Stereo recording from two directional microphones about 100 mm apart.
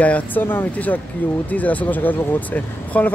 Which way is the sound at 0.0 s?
15° left (ahead or behind).